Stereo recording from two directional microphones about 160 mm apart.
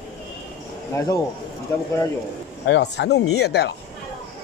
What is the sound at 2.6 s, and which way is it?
Speech, 90° left.